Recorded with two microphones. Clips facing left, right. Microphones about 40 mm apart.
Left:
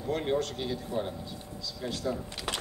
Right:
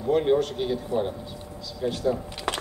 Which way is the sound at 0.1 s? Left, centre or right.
Centre.